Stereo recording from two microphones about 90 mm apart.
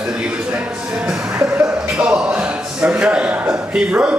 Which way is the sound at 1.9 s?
10° right (ahead or behind).